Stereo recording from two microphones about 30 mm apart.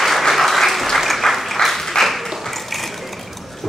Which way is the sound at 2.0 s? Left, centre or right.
Centre.